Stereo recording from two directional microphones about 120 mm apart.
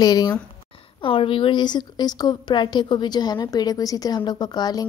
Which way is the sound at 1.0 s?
50° left (ahead or behind).